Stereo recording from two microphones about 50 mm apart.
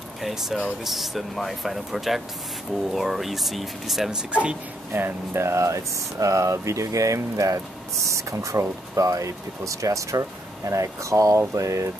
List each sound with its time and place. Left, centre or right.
0.2 s speech: centre
4.1 s speech: right
4.9 s speech: right